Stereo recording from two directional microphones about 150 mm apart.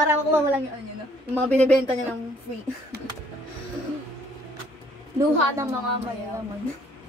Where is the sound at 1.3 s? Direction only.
10° left (ahead or behind).